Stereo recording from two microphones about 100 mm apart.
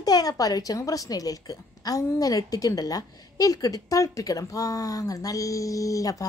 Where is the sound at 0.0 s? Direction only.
40° left (ahead or behind).